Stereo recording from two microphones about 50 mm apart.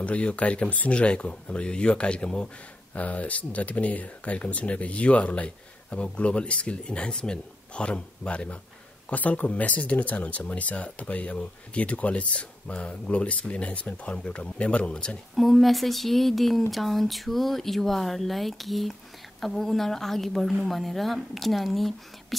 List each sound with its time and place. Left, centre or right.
0.0 s speech: left
2.9 s speech: left
15.3 s speech: centre